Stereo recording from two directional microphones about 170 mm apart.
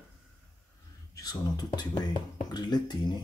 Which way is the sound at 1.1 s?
20° left (ahead or behind).